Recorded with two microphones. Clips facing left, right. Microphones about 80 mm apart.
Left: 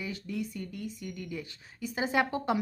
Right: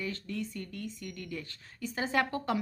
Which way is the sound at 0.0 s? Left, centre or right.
Centre.